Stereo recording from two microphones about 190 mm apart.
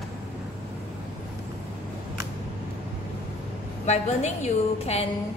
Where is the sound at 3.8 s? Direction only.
35° left (ahead or behind).